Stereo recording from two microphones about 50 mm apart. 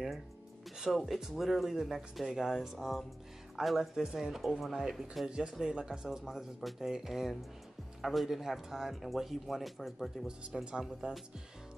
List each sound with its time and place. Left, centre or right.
0.9 s speech: centre
10.2 s speech: centre